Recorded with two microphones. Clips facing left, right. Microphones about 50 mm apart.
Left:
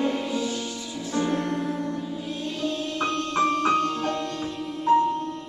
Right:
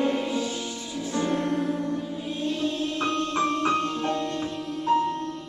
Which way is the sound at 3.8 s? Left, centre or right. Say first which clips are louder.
Left 1 dB; right.